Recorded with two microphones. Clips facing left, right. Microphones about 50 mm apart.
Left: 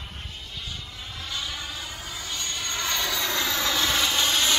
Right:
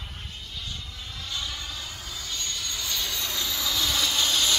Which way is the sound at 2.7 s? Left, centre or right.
Left.